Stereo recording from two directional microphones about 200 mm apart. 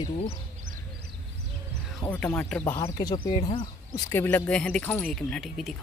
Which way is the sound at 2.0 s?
10° left (ahead or behind).